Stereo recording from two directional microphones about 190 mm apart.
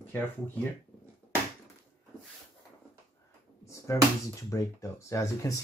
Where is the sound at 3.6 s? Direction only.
15° left (ahead or behind).